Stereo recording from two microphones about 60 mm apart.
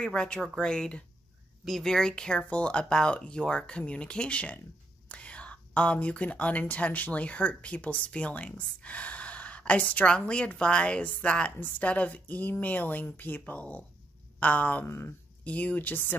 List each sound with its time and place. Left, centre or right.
0.0 s speech: centre
14.9 s speech: left
15.4 s speech: left